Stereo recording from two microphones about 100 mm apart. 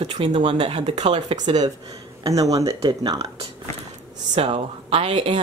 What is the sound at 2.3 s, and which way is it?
Speech, 35° right (ahead or behind).